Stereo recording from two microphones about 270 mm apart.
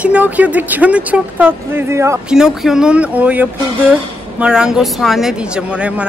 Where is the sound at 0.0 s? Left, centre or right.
Centre.